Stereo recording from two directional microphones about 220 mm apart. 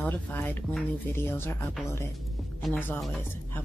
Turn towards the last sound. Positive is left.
turn(degrees=10)  # may be behind; listen again after turning